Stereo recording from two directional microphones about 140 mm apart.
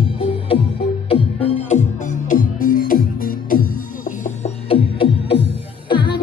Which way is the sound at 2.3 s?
75° left (ahead or behind).